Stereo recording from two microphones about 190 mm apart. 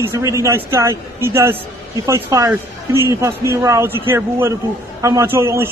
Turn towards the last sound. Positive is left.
turn(degrees=-15)  # may be behind; listen again after turning